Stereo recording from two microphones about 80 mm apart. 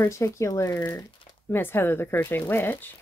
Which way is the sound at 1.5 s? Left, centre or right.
Left.